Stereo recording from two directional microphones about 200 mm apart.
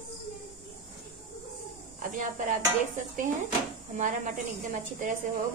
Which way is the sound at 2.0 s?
40° right (ahead or behind).